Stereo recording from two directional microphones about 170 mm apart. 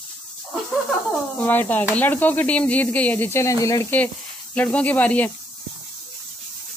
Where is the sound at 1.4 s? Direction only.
10° left (ahead or behind).